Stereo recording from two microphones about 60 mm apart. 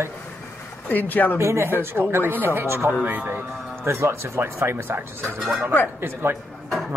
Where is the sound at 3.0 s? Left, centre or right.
Right.